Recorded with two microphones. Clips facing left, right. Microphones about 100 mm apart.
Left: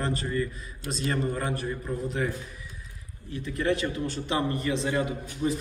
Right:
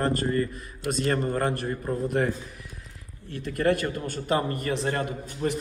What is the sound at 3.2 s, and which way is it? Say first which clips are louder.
A man's voice: right 3 dB; 60° right (ahead or behind).